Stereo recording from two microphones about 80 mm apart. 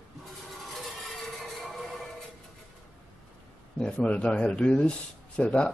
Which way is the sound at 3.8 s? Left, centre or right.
Centre.